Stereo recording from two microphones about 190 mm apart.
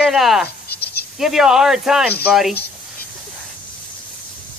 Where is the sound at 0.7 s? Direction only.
55° left (ahead or behind).